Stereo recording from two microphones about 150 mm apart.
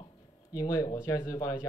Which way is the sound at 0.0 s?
25° left (ahead or behind).